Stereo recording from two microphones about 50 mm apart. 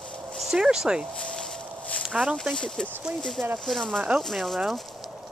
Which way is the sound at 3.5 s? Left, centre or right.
Centre.